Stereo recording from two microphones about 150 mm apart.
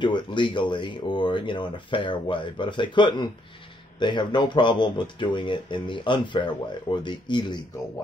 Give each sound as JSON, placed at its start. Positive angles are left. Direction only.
{"t": 0.0, "sound": "speech", "side_deg": 30}